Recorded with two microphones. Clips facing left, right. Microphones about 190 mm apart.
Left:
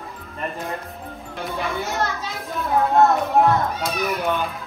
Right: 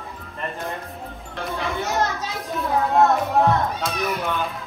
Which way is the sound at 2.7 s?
Centre (ahead or behind).